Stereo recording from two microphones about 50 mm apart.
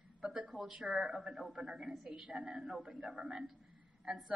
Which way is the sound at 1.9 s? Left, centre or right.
Centre.